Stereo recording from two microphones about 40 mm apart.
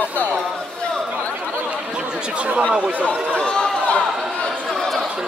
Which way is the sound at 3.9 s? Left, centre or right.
Left.